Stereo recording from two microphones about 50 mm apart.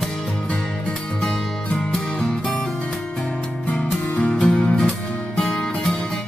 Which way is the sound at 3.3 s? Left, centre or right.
Left.